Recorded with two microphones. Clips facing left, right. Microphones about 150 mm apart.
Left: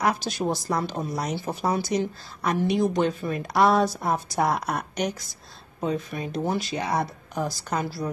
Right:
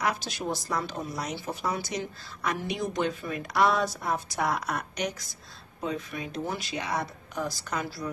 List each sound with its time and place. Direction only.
0.0 s speech: 40° left (ahead or behind)